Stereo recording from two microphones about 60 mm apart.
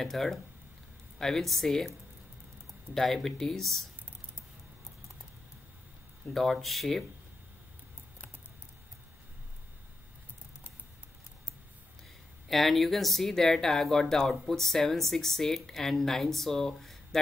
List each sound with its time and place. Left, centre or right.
0.0 s speech: centre
2.9 s speech: centre
6.3 s speech: centre
12.4 s speech: centre